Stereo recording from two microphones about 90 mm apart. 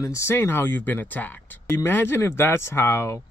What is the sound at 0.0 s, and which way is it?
Speech, 30° left (ahead or behind).